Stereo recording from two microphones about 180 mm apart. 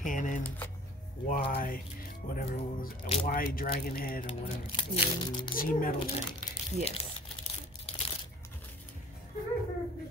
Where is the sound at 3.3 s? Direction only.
50° left (ahead or behind).